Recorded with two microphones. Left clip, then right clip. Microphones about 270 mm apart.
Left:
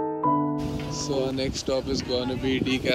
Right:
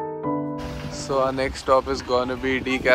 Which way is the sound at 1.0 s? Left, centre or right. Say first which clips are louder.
Right 6 dB; centre.